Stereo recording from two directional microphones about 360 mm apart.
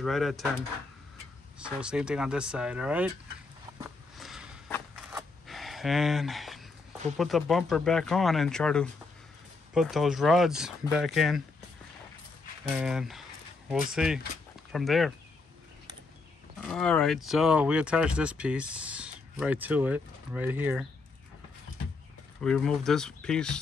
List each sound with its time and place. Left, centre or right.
0.0 s speech: centre
1.6 s speech: centre
4.2 s a sound: centre
7.2 s speech: centre
12.7 s speech: centre
16.6 s speech: centre
22.4 s speech: centre